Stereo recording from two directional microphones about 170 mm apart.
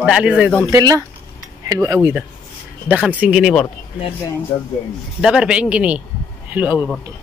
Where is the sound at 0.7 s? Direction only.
20° right (ahead or behind); by 3.7 s centre (ahead or behind).